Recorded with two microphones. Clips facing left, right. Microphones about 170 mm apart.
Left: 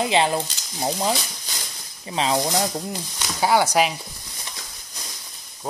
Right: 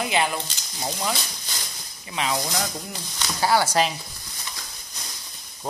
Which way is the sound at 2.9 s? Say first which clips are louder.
Left 2 dB; 15° left (ahead or behind).